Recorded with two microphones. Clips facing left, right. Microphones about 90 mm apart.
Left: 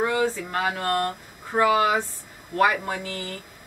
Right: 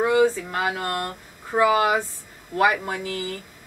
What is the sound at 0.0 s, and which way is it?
Speech, 10° right (ahead or behind).